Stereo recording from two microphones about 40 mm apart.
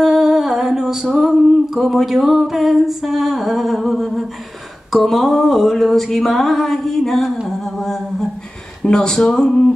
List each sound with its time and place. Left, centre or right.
0.0 s a sound: centre
7.4 s humming: centre
8.8 s speech: centre